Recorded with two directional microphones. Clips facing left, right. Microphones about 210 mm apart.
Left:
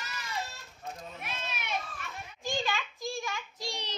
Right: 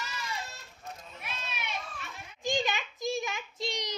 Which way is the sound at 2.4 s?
15° right (ahead or behind).